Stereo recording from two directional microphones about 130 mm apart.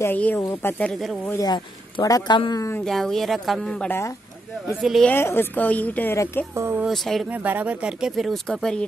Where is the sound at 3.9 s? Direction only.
20° left (ahead or behind).